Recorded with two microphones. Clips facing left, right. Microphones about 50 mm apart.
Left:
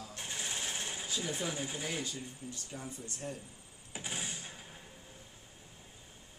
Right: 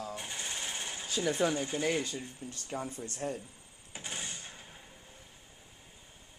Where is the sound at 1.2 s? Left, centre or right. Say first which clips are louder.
Right 9 dB; right.